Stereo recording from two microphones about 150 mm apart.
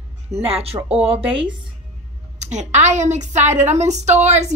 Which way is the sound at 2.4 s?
50° right (ahead or behind).